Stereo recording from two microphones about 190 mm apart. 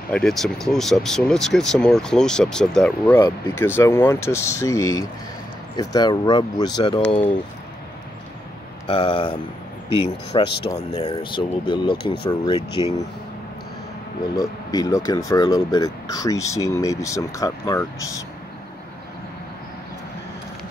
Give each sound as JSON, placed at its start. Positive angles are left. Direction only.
{"t": 0.1, "sound": "speech", "side_deg": 0}
{"t": 8.8, "sound": "speech", "side_deg": 25}
{"t": 14.3, "sound": "speech", "side_deg": 20}